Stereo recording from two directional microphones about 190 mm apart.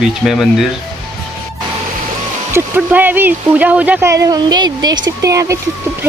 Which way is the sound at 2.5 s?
10° right (ahead or behind).